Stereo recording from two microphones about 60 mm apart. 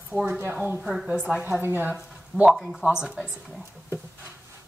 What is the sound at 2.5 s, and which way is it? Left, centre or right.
Speech, centre.